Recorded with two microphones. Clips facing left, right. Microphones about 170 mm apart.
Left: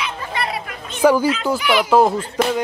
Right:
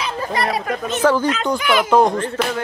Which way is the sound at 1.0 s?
10° left (ahead or behind).